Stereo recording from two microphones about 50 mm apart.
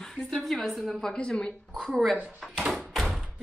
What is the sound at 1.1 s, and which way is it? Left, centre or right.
Speech, left.